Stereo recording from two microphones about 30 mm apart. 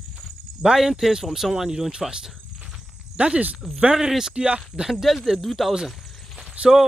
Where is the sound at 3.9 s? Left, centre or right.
Centre.